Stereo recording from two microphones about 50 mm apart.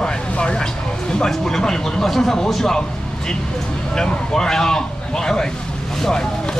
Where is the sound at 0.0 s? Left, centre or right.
Centre.